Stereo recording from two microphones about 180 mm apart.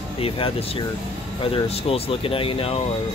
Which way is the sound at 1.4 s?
30° left (ahead or behind).